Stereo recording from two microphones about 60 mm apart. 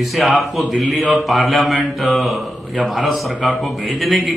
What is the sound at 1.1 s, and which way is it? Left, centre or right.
A man's voice, centre.